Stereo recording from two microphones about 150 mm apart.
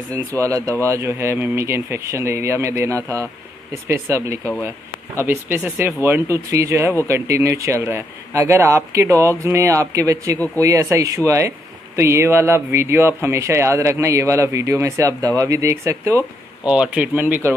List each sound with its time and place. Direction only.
0.4 s speech: 20° right (ahead or behind)
16.6 s speech: 5° right (ahead or behind)